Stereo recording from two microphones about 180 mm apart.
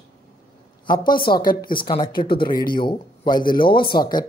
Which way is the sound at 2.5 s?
55° left (ahead or behind).